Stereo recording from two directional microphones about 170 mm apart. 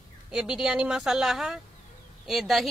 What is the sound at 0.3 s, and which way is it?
Speech, 5° right (ahead or behind).